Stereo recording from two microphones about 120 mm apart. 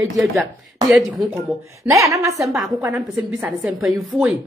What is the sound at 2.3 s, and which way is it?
A woman's voice, 5° right (ahead or behind).